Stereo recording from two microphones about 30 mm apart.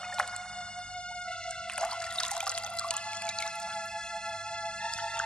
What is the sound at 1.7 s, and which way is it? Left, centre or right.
Water, left.